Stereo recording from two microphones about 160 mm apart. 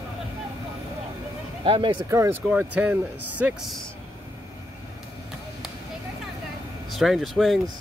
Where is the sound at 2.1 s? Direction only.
20° right (ahead or behind); by 3.9 s centre (ahead or behind).